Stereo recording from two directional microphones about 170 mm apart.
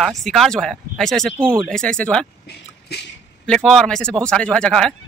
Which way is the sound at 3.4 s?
5° left (ahead or behind).